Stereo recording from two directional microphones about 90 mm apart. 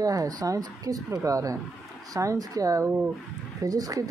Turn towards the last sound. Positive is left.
turn(degrees=-40)  # may be behind; listen again after turning